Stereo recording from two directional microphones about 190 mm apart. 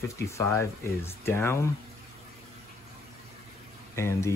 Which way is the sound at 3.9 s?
15° left (ahead or behind).